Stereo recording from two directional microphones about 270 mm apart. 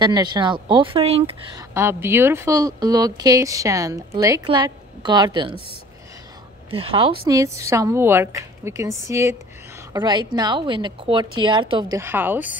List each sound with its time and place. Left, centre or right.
0.0 s a woman's voice: centre
1.7 s a woman's voice: centre
6.7 s a woman's voice: centre